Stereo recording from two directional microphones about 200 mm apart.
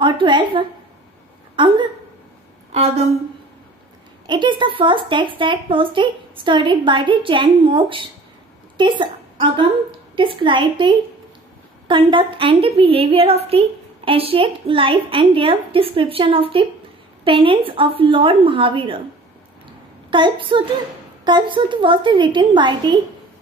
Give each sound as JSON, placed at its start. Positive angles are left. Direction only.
{"t": 0.0, "sound": "a woman's voice", "side_deg": -25}
{"t": 4.3, "sound": "a woman's voice", "side_deg": -25}
{"t": 20.1, "sound": "a woman's voice", "side_deg": -25}